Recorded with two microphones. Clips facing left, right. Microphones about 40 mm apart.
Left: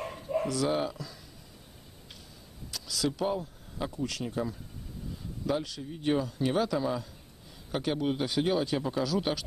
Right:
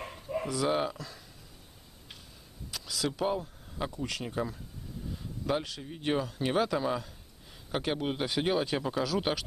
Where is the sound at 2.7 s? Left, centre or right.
Centre.